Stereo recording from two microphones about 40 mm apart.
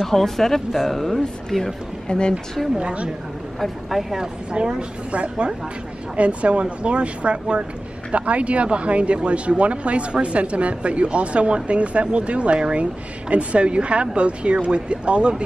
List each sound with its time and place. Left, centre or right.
0.0 s speech: centre
2.0 s a woman's voice: left
2.8 s speech: right
3.5 s speech: centre
4.2 s speech: right